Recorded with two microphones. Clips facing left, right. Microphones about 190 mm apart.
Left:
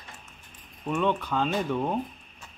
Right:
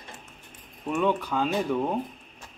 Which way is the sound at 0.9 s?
10° right (ahead or behind).